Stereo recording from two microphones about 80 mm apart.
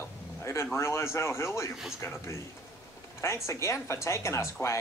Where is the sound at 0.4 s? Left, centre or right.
Left.